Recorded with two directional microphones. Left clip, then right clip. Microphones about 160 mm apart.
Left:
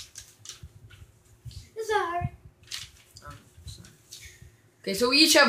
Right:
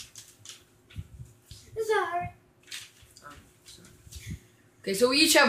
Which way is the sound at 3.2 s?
15° left (ahead or behind).